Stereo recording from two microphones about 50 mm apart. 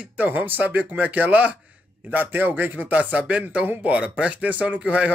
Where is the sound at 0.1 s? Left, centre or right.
Right.